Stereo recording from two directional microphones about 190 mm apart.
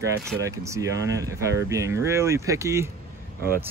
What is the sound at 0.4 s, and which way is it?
Speech, 15° right (ahead or behind).